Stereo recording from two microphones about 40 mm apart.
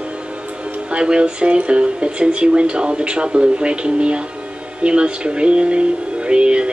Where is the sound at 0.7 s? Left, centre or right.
Right.